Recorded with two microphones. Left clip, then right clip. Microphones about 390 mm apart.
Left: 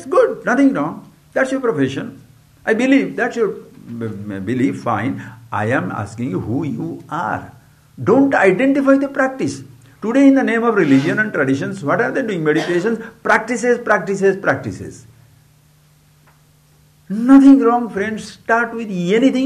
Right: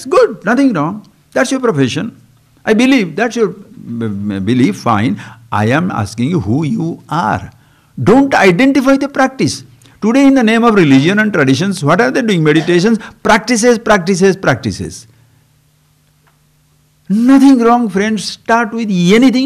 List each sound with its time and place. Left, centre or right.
0.0 s a man's voice: right
17.1 s speech: right